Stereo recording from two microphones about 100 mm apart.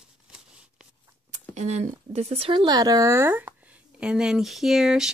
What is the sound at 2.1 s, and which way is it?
Speech, 90° right.